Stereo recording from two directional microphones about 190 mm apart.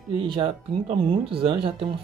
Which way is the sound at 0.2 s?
25° right (ahead or behind).